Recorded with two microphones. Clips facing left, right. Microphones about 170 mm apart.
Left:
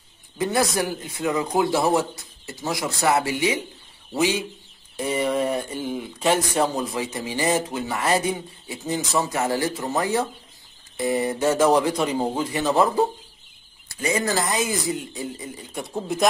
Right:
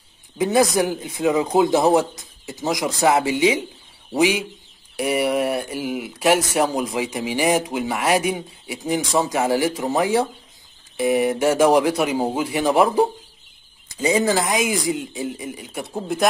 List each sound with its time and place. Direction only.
0.4 s speech: 20° right (ahead or behind)